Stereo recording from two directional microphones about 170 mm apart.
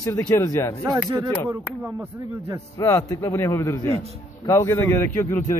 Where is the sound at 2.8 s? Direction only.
20° left (ahead or behind).